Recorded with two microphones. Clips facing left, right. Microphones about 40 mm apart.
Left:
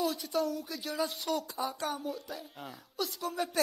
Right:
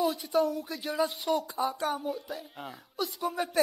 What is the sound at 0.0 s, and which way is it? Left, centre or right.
Speech, centre.